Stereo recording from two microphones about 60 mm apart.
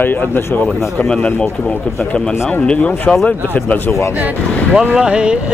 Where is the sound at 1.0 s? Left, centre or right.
Centre.